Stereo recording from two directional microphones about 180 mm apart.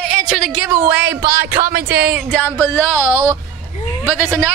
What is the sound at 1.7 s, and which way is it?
Speech, 60° right (ahead or behind).